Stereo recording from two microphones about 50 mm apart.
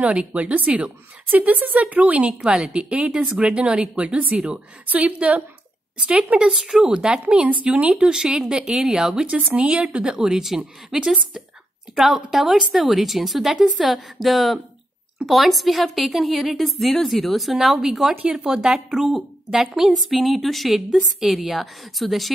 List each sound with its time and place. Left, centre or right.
0.0 s a woman's voice: right
2.4 s a woman's voice: centre
8.0 s a woman's voice: centre
10.0 s a woman's voice: centre